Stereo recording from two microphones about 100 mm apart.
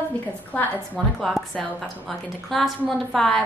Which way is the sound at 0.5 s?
15° left (ahead or behind).